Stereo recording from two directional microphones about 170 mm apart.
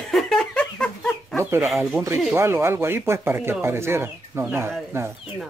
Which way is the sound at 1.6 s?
5° right (ahead or behind).